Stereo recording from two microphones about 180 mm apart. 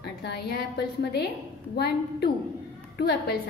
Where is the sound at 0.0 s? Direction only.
60° left (ahead or behind).